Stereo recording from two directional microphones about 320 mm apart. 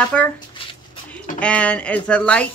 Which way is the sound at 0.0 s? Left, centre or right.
Centre.